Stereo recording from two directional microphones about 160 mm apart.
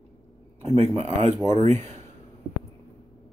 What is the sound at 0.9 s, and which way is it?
Speech, 40° right (ahead or behind).